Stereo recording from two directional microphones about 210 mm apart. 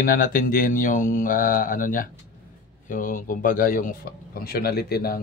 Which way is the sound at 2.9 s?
40° left (ahead or behind).